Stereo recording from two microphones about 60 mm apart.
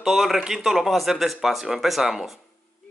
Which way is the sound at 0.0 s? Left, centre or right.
Centre.